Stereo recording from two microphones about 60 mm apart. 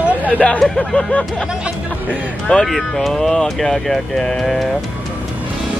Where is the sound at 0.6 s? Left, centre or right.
Centre.